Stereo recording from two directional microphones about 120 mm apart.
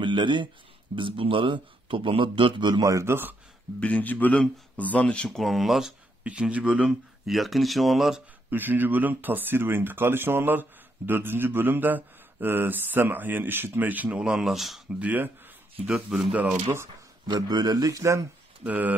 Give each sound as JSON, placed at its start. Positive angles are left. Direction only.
{"t": 0.0, "sound": "a man's voice", "side_deg": -40}
{"t": 3.8, "sound": "speech", "side_deg": 10}
{"t": 8.5, "sound": "speech", "side_deg": -15}
{"t": 17.3, "sound": "speech", "side_deg": -35}
{"t": 18.7, "sound": "speech", "side_deg": -15}